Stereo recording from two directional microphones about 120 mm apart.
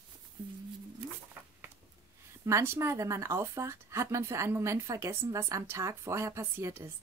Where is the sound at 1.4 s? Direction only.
15° right (ahead or behind).